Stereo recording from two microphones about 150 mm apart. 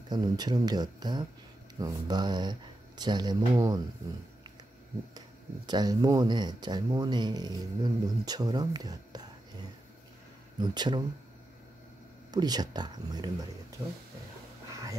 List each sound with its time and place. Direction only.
0.1 s speech: 25° right (ahead or behind)
5.7 s speech: 25° right (ahead or behind)
12.3 s speech: 25° right (ahead or behind)